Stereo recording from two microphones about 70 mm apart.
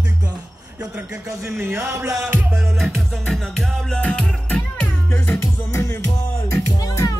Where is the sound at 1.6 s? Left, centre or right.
Right.